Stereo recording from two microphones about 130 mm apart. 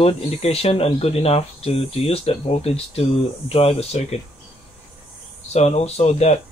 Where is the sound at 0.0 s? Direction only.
50° left (ahead or behind).